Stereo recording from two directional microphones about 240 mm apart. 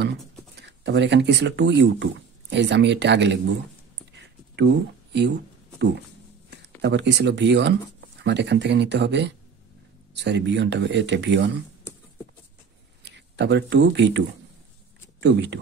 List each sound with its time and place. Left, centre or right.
0.6 s speech: right
4.6 s speech: right
6.8 s speech: right
13.0 s speech: right